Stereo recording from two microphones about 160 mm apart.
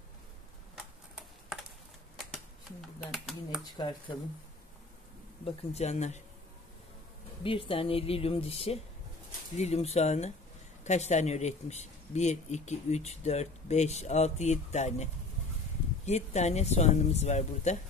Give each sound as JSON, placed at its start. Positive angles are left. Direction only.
{"t": 0.7, "sound": "typing", "side_deg": 0}
{"t": 3.0, "sound": "a sound", "side_deg": 0}
{"t": 3.7, "sound": "speech", "side_deg": 25}
{"t": 5.4, "sound": "speech", "side_deg": 40}
{"t": 7.4, "sound": "speech", "side_deg": 35}
{"t": 16.1, "sound": "speech", "side_deg": 45}